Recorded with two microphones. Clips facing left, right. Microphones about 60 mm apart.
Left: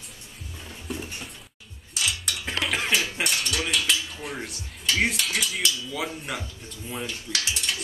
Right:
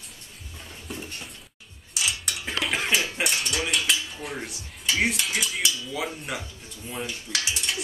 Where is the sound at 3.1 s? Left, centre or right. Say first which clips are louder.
Even; centre.